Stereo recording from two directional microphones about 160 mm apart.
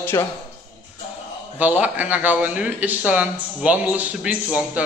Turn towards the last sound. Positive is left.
turn(degrees=-10)  # may be behind; listen again after turning